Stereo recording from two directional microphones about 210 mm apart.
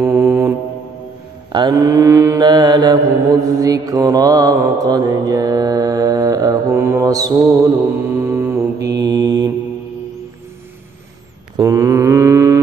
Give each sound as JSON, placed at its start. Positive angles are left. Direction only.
{"t": 0.0, "sound": "mantra", "side_deg": -10}
{"t": 11.5, "sound": "mantra", "side_deg": -15}